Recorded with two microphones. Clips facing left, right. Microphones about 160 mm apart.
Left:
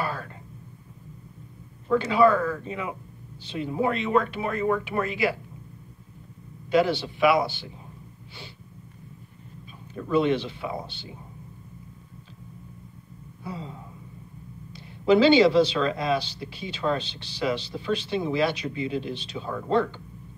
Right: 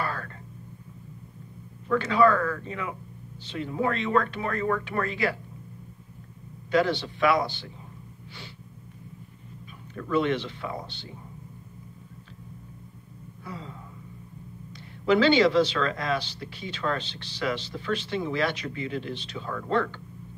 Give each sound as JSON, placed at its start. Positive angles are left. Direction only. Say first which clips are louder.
{"t": 0.0, "sound": "a sound", "louder": "left 1 dB", "side_deg": 15}
{"t": 1.9, "sound": "speech", "louder": "left 2 dB", "side_deg": 15}
{"t": 6.7, "sound": "speech", "louder": "left 2 dB", "side_deg": 10}
{"t": 9.9, "sound": "speech", "louder": "left 3 dB", "side_deg": 15}
{"t": 13.4, "sound": "a sound", "louder": "left 3 dB", "side_deg": 20}
{"t": 14.8, "sound": "speech", "louder": "left 3 dB", "side_deg": 15}